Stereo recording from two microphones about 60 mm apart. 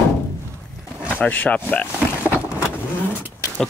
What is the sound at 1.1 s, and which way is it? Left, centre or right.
Speech, left.